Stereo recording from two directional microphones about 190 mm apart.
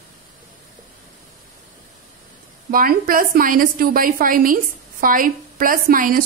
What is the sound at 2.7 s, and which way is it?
A woman's voice, 50° right (ahead or behind).